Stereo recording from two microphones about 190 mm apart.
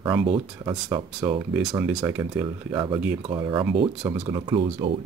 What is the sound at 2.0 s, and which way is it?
Speech, 15° right (ahead or behind).